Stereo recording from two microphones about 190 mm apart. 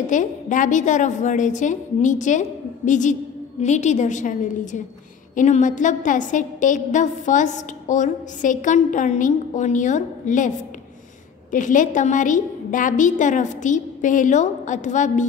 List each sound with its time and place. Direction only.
0.0 s a woman's voice: 40° left (ahead or behind)
11.5 s a woman's voice: 45° left (ahead or behind)